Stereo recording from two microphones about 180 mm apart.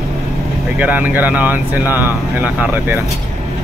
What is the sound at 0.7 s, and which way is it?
Speech, 10° right (ahead or behind).